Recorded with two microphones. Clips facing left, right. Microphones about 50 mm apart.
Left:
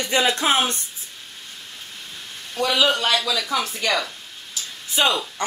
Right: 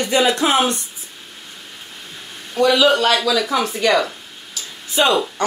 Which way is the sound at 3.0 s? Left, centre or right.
Centre.